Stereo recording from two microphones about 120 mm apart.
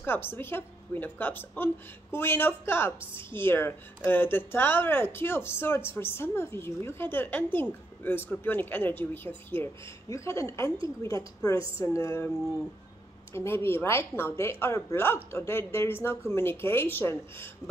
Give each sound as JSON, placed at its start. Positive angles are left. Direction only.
{"t": 0.0, "sound": "speech", "side_deg": 20}
{"t": 13.3, "sound": "speech", "side_deg": 20}